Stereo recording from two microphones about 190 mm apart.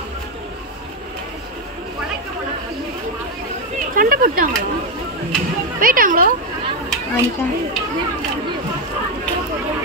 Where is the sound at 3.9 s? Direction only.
50° right (ahead or behind).